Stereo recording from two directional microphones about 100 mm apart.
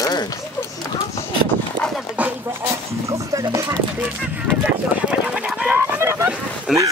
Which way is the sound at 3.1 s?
30° right (ahead or behind).